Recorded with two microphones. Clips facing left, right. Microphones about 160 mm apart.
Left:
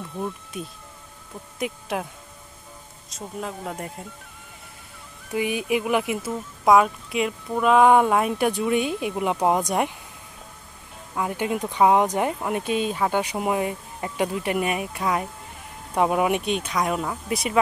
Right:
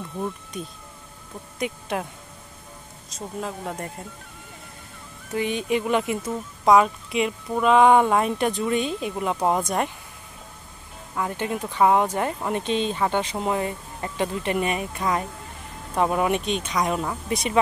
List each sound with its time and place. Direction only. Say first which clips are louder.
0.0 s speech: right 1 dB; centre (ahead or behind)
3.1 s speech: right 1 dB; centre (ahead or behind)
5.3 s speech: even; 10° left (ahead or behind)
11.1 s speech: left 2 dB; 15° left (ahead or behind)